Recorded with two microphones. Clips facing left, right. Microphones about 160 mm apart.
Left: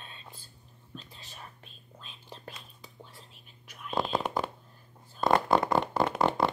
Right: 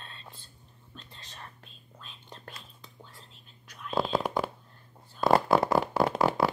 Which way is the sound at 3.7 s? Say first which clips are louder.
Right 2 dB; centre (ahead or behind).